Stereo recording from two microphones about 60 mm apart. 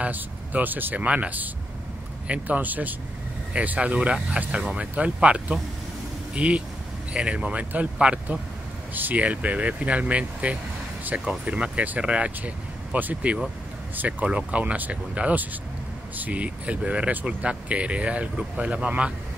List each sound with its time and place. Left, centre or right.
0.0 s speech: right